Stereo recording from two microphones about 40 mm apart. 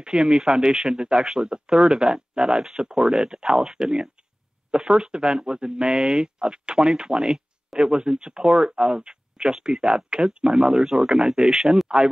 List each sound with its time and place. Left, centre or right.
0.0 s speech: right